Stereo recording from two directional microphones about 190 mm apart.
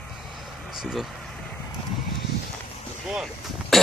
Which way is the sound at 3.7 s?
Centre (ahead or behind).